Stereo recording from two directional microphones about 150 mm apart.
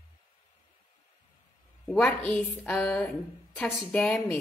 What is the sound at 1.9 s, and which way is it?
A woman's voice, 10° left (ahead or behind).